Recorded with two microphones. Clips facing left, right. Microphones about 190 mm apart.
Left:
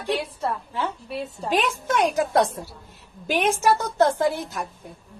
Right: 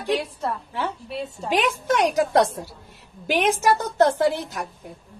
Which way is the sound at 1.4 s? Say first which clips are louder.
Right 2 dB; 10° right (ahead or behind).